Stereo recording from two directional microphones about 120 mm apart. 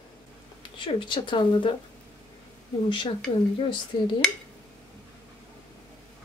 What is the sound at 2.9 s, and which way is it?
Speech, 45° left (ahead or behind).